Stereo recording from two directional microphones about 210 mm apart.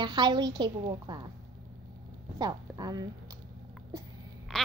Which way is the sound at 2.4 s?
20° right (ahead or behind).